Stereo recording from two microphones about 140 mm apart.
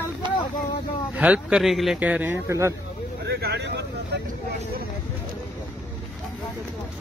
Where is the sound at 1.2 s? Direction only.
10° right (ahead or behind).